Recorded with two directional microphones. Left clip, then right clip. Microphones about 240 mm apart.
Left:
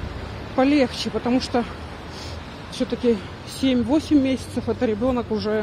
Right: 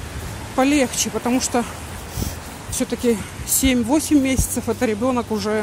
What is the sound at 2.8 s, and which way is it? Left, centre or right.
Speech, centre.